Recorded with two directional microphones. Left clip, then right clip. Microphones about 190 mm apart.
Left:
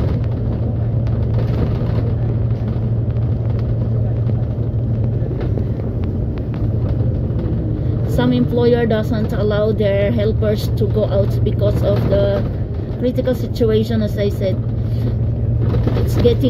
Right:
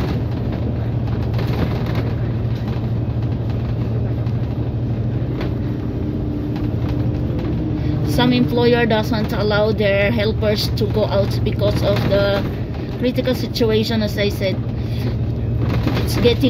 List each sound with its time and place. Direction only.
8.1 s a woman's voice: centre (ahead or behind)
16.2 s a woman's voice: centre (ahead or behind)